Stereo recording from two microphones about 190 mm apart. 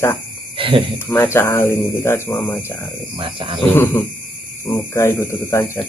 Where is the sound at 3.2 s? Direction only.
30° right (ahead or behind).